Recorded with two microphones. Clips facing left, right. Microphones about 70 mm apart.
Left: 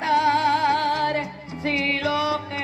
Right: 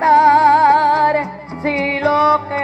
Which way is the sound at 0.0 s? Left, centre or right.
Right.